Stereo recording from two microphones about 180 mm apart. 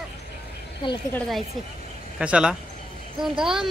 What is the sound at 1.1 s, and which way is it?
Speech, 5° left (ahead or behind).